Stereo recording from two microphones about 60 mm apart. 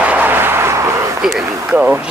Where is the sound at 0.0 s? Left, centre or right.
Right.